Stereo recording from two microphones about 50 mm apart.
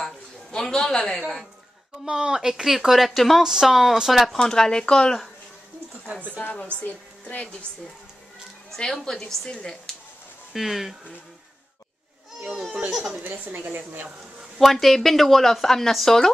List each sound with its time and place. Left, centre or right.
0.0 s a sound: centre
2.0 s speech: centre
4.4 s a woman's voice: centre
6.8 s a woman's voice: left
8.7 s a woman's voice: centre
10.5 s speech: centre
12.4 s speech: centre
13.2 s a woman's voice: right
14.6 s speech: centre